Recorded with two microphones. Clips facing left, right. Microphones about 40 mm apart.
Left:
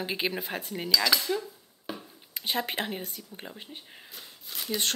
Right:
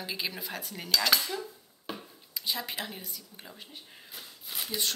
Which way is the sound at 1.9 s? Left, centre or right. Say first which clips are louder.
Left 1 dB; centre.